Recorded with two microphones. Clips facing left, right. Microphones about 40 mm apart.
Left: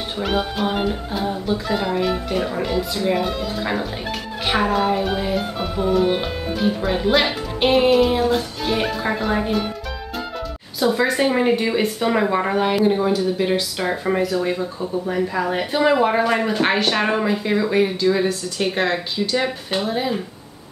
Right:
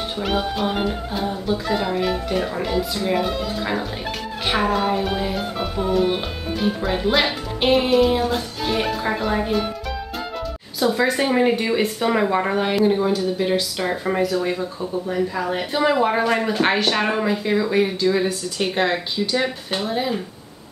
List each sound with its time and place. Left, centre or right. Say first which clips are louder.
0.2 s speech: left 1 dB; centre
10.8 s speech: left 1 dB; centre